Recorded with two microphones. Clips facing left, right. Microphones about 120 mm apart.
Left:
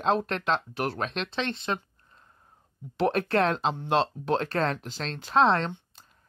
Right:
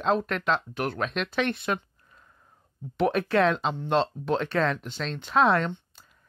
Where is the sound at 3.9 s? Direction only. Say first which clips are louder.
Right 1 dB; centre (ahead or behind).